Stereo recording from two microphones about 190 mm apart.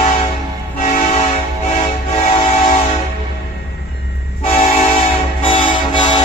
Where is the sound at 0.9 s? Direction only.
30° left (ahead or behind).